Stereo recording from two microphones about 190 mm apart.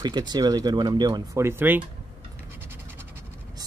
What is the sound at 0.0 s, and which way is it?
Speech, 20° right (ahead or behind).